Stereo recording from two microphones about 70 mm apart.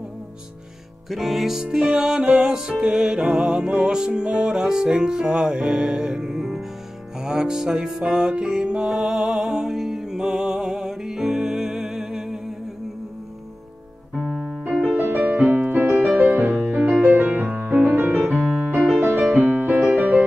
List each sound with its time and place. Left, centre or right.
1.1 s music: centre
14.6 s music: centre
19.3 s keyboard: right
20.0 s music: right